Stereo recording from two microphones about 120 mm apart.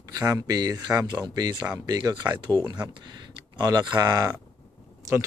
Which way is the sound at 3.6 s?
35° right (ahead or behind).